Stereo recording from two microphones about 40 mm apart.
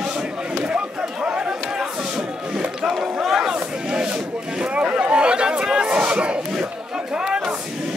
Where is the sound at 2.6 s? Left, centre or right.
Centre.